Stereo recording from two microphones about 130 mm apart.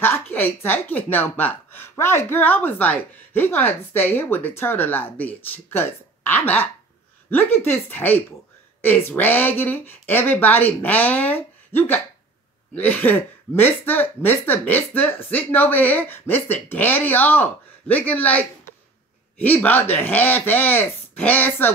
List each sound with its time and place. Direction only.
0.0 s speech: 15° left (ahead or behind)